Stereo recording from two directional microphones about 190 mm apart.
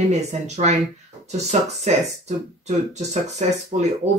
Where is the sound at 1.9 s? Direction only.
35° right (ahead or behind).